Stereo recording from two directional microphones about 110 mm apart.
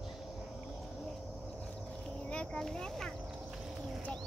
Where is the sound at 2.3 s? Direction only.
5° left (ahead or behind).